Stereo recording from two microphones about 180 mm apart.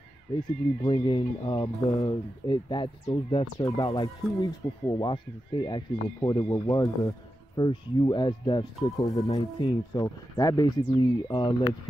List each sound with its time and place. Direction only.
0.8 s speech: 25° left (ahead or behind)